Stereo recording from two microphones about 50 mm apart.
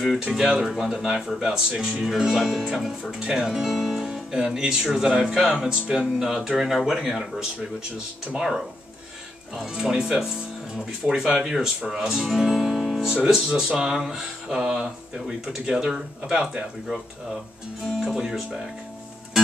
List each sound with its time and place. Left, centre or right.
0.5 s speech: centre